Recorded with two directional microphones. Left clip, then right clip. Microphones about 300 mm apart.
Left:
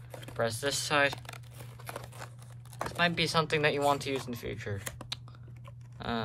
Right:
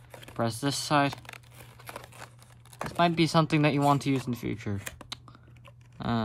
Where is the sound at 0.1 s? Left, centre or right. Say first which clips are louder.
Even; centre.